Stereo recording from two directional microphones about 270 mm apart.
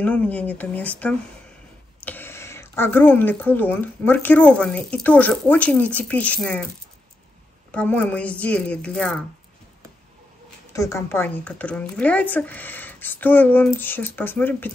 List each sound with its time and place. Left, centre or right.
0.0 s speech: centre
7.7 s speech: centre
10.7 s speech: centre